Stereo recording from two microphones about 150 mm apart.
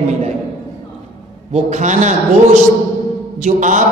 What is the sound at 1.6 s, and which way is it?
Speech, 50° right (ahead or behind).